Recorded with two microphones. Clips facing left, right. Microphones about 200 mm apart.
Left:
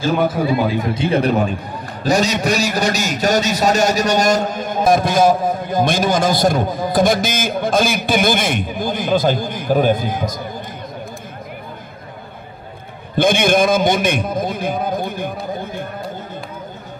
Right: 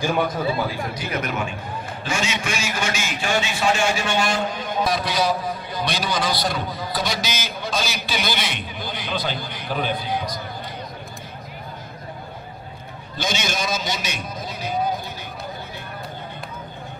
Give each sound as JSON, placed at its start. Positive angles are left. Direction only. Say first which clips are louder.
{"t": 0.3, "sound": "a man's voice", "louder": "left 7 dB", "side_deg": 20}
{"t": 13.1, "sound": "a man's voice", "louder": "left 12 dB", "side_deg": 55}